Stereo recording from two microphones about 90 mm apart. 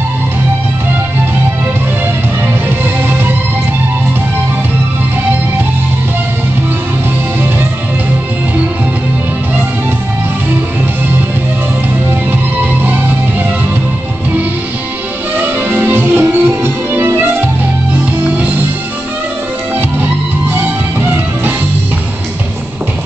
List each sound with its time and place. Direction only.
2.8 s music: 25° right (ahead or behind)
12.8 s music: 20° right (ahead or behind)
15.3 s music: 20° right (ahead or behind)
20.0 s music: 25° right (ahead or behind)